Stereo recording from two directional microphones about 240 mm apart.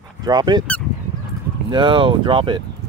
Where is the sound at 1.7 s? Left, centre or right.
Centre.